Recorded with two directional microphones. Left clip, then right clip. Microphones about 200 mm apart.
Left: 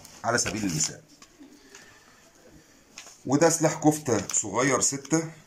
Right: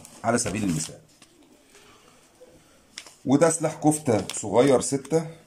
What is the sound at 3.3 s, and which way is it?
Speech, 15° right (ahead or behind).